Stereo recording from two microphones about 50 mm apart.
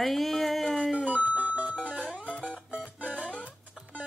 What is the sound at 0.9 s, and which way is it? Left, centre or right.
Music, right.